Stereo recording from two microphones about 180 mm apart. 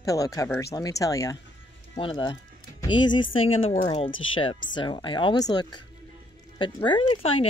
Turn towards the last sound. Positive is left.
turn(degrees=30)  # may be behind; listen again after turning